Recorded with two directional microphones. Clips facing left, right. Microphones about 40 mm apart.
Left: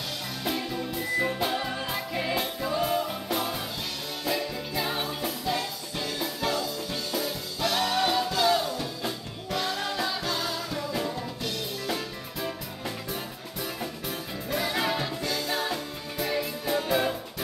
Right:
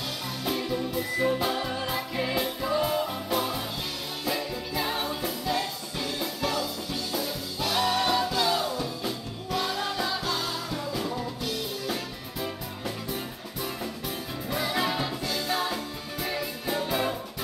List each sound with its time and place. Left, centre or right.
0.5 s music: centre
7.6 s music: centre
14.5 s music: centre